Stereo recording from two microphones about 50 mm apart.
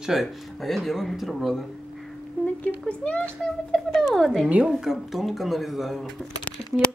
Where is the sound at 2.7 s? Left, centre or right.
Left.